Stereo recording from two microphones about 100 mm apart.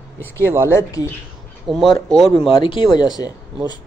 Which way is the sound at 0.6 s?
30° left (ahead or behind).